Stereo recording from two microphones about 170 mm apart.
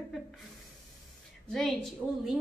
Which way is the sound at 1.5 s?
Centre (ahead or behind).